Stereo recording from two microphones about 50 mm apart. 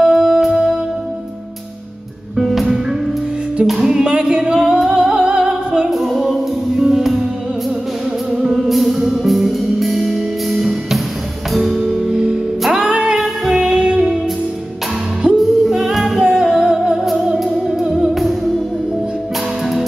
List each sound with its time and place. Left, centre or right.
0.0 s music: centre
2.3 s music: centre
3.8 s music: centre
5.9 s music: centre
8.4 s music: centre
15.3 s singing: centre
16.3 s music: centre
17.0 s music: centre